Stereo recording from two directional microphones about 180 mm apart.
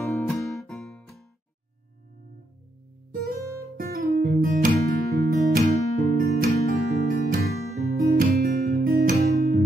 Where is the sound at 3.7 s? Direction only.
60° right (ahead or behind).